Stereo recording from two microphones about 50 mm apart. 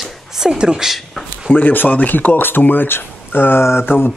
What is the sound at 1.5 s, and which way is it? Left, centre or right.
Speech, left.